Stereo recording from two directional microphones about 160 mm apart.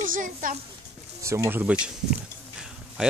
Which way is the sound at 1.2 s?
20° right (ahead or behind).